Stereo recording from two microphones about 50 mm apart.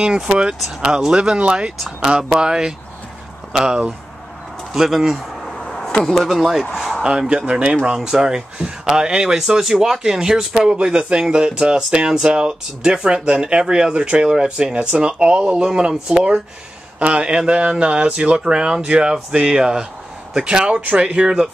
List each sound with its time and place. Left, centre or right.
0.0 s speech: centre
0.6 s speech: centre
0.8 s speech: centre
4.7 s a sound: centre
6.0 s speech: centre
7.0 s speech: centre